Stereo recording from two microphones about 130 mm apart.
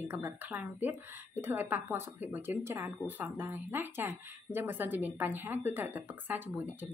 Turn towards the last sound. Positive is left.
turn(degrees=-15)  # may be behind; listen again after turning